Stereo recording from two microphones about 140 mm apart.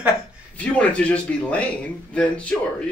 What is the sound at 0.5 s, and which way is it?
A man's voice, 10° left (ahead or behind).